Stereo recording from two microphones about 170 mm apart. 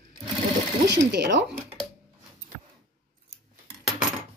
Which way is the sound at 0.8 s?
90° right.